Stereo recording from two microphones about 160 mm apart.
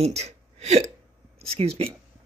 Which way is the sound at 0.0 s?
40° right (ahead or behind).